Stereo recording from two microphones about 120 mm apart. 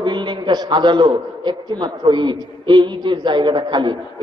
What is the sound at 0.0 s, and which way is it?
A man's voice, 40° right (ahead or behind).